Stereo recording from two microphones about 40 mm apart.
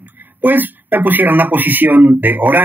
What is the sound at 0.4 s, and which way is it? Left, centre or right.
Speech, right.